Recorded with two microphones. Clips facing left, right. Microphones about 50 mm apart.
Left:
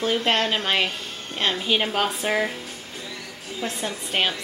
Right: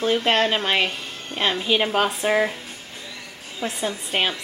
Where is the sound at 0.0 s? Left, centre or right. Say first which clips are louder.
Right 2 dB; centre.